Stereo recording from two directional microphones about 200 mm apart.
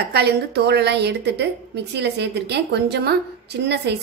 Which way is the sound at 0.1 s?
55° right (ahead or behind).